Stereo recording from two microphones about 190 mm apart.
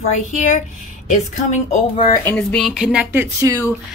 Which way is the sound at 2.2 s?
5° left (ahead or behind).